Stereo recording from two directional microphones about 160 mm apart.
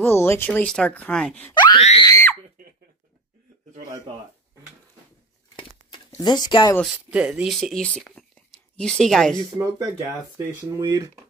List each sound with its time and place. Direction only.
0.0 s speech: 15° left (ahead or behind)
1.8 s speech: 40° left (ahead or behind)
2.0 s screaming: 20° left (ahead or behind)
5.6 s a sound: 30° left (ahead or behind)
7.1 s speech: 5° right (ahead or behind)
9.6 s speech: 20° right (ahead or behind)